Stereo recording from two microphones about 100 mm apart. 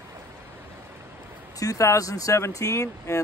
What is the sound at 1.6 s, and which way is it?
Speech, 35° left (ahead or behind).